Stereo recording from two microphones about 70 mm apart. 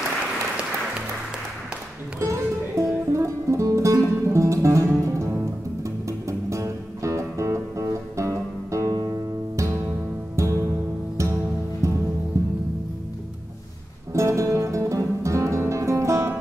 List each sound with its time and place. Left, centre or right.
2.1 s music: right
14.1 s music: right